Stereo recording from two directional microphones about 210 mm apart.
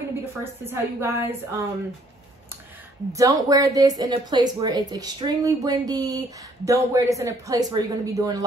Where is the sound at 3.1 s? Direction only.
15° right (ahead or behind).